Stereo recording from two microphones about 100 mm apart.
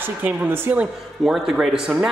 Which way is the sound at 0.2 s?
15° right (ahead or behind).